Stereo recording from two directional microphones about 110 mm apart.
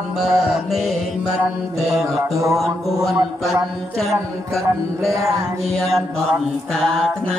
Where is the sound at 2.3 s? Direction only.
30° right (ahead or behind).